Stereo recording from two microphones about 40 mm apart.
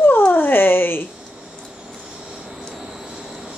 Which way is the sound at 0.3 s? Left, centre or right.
Left.